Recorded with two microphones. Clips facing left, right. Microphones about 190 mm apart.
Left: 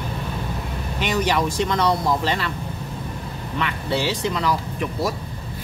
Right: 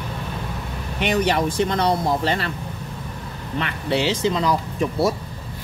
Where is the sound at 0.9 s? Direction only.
60° right (ahead or behind).